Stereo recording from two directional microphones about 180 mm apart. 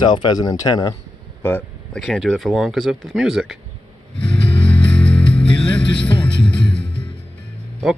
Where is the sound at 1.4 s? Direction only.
10° left (ahead or behind).